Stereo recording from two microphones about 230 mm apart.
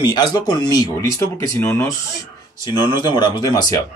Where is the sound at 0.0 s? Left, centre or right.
Centre.